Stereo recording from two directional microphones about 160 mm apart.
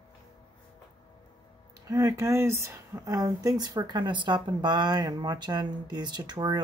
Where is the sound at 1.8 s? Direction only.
25° right (ahead or behind).